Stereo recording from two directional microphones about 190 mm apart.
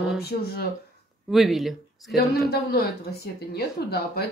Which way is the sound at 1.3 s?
Centre (ahead or behind).